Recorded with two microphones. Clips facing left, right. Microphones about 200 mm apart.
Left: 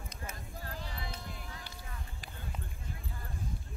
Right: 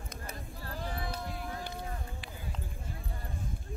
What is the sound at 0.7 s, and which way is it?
Sheep, 50° right (ahead or behind).